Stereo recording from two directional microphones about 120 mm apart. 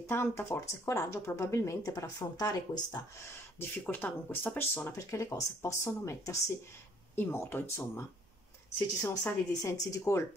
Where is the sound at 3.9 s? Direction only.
15° left (ahead or behind).